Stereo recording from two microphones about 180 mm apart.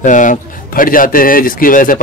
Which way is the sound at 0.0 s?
45° left (ahead or behind).